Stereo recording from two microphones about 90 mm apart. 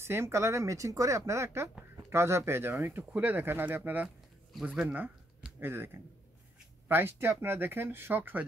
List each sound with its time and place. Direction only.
0.0 s speech: 30° right (ahead or behind)